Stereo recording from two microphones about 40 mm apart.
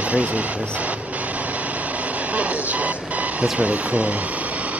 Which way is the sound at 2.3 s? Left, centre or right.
Right.